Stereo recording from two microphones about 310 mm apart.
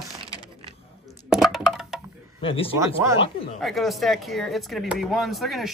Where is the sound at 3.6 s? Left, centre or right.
Centre.